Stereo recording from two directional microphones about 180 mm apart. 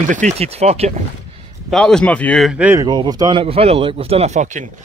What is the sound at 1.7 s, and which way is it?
Speech, 5° left (ahead or behind).